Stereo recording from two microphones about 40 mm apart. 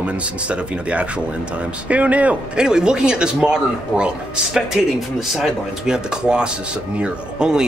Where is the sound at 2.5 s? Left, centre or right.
Centre.